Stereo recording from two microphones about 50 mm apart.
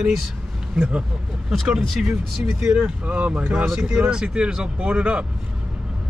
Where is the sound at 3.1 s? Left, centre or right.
Right.